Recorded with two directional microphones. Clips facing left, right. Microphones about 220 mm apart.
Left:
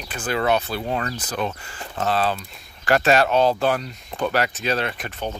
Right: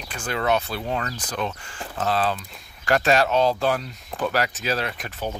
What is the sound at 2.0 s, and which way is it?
Speech, centre (ahead or behind).